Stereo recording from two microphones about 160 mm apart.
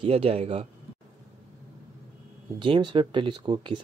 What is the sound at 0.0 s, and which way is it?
Speech, 40° right (ahead or behind).